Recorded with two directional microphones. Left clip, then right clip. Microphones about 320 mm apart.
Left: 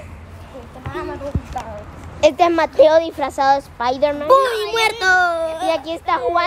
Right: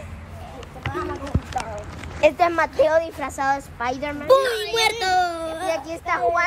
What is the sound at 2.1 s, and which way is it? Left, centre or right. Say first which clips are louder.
A woman's voice: left 4 dB; centre.